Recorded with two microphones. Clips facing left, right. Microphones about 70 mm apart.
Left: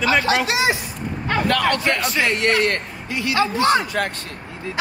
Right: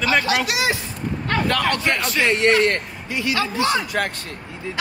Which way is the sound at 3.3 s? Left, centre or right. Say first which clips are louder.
Left 4 dB; left.